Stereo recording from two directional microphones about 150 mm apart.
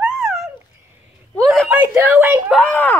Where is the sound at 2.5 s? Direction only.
10° left (ahead or behind).